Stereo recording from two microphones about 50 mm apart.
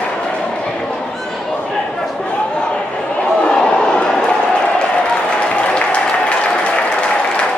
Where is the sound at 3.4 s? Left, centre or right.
Centre.